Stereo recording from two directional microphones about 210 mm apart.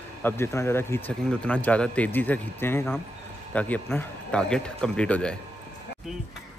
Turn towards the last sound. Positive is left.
turn(degrees=5)  # may be behind; listen again after turning